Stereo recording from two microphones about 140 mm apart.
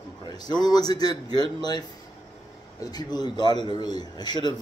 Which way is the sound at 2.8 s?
30° left (ahead or behind).